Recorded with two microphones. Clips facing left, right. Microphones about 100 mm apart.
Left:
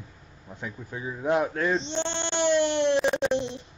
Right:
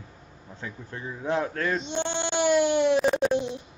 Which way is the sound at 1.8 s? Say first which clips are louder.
Right 1 dB; 10° right (ahead or behind).